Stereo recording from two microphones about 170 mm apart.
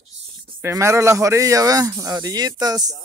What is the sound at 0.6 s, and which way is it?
Speech, 15° right (ahead or behind).